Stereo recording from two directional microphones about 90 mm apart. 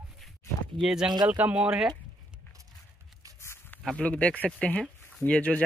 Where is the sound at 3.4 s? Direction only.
30° left (ahead or behind).